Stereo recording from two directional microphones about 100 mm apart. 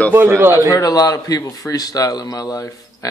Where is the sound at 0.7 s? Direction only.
35° left (ahead or behind).